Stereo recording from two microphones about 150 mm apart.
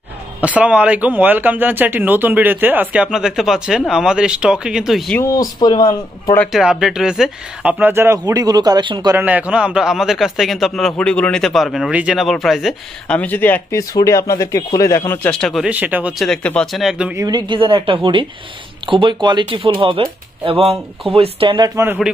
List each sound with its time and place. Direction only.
0.4 s speech: 10° right (ahead or behind)
5.2 s speech: 25° left (ahead or behind)
6.5 s speech: 5° right (ahead or behind); by 9.1 s 30° right (ahead or behind)
9.1 s a man's voice: 10° right (ahead or behind)
13.2 s speech: 10° left (ahead or behind)
15.3 s a man's voice: centre (ahead or behind)
15.7 s speech: 10° right (ahead or behind)
16.3 s a man's voice: 5° left (ahead or behind)
17.1 s speech: 25° right (ahead or behind)